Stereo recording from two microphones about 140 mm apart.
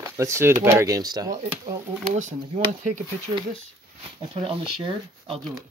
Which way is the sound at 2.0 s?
60° right (ahead or behind).